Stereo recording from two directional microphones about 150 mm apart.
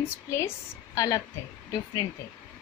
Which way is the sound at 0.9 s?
20° left (ahead or behind).